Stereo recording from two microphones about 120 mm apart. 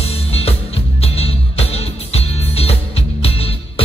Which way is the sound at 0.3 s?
55° left (ahead or behind).